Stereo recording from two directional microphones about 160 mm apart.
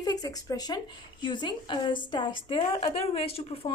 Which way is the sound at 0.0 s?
25° left (ahead or behind).